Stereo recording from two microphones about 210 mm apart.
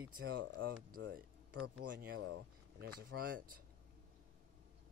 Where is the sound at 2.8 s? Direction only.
45° right (ahead or behind).